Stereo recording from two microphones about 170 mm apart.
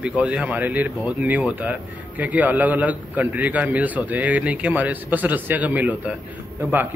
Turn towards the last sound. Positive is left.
turn(degrees=-10)  # may be behind; listen again after turning